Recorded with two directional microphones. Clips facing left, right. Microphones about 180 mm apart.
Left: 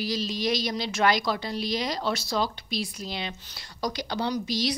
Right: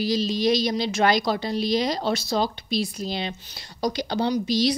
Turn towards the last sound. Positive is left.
turn(degrees=-25)  # may be behind; listen again after turning